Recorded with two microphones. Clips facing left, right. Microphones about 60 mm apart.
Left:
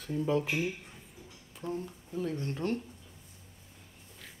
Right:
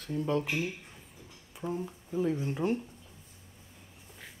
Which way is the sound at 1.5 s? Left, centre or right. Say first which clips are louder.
Right 2 dB; centre.